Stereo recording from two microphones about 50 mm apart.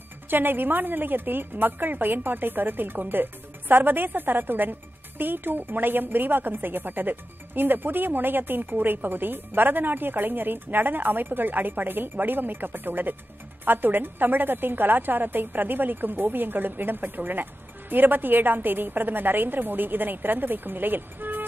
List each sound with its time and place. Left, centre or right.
0.3 s a woman's voice: right